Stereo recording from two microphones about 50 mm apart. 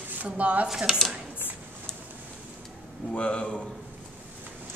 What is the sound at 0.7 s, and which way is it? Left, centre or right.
Speech, centre.